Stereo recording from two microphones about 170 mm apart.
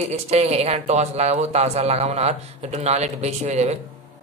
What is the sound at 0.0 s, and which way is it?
A man's voice, 40° right (ahead or behind).